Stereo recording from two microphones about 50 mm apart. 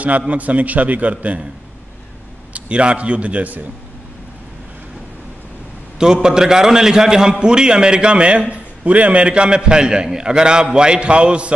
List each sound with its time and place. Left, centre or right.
0.3 s a man's voice: right
2.5 s a man's voice: right
5.9 s a man's voice: centre